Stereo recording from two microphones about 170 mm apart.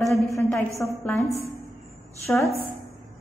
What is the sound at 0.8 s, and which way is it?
Speech, 10° left (ahead or behind).